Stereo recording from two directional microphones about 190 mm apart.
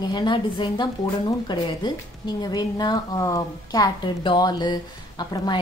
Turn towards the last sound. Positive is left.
turn(degrees=20)  # may be behind; listen again after turning